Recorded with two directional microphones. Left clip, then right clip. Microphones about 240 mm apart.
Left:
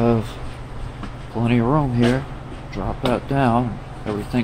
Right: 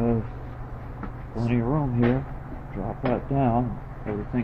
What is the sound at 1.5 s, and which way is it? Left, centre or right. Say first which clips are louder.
Speech: left 7 dB; left.